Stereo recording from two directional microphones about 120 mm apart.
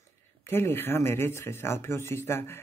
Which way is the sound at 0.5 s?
20° left (ahead or behind).